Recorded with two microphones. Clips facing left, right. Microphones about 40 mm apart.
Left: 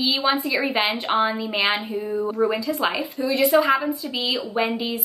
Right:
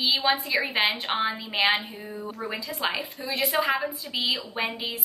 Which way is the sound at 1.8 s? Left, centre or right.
Left.